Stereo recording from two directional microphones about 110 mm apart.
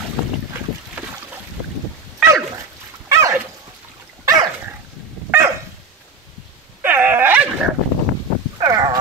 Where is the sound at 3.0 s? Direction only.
30° right (ahead or behind).